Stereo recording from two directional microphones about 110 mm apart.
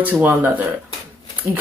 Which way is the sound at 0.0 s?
15° right (ahead or behind).